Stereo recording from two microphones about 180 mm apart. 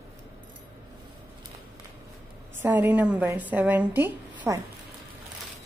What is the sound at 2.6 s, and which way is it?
A woman's voice, 10° right (ahead or behind).